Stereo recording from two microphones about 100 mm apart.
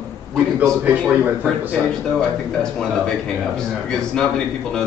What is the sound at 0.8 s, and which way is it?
Speech, 15° right (ahead or behind).